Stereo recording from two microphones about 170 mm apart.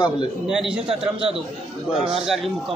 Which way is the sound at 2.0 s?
5° right (ahead or behind).